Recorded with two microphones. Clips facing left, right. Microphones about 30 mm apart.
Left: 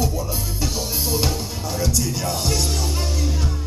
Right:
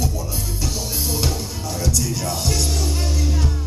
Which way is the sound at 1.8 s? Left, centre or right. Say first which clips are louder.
Even; centre.